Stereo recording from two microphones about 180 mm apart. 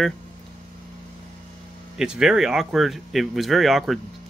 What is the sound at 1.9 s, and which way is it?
Speech, 5° right (ahead or behind).